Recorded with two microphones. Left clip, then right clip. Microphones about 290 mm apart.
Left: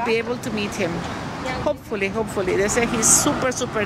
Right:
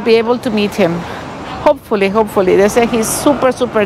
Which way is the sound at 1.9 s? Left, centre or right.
Right.